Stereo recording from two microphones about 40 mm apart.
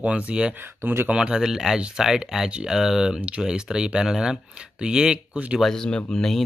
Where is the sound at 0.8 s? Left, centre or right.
Right.